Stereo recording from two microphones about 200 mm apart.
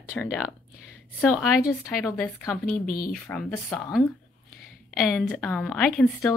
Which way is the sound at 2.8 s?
45° left (ahead or behind).